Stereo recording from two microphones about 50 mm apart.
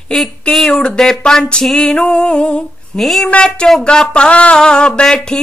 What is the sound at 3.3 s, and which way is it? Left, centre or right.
Speech, centre.